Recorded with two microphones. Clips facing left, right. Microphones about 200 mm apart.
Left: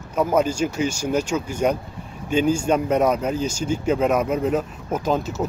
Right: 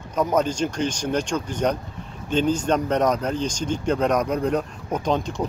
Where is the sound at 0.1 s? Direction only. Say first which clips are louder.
Left 2 dB; 10° left (ahead or behind).